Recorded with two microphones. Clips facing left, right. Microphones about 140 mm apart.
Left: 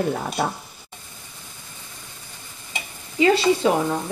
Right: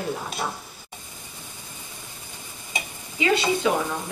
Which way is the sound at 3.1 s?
35° left (ahead or behind).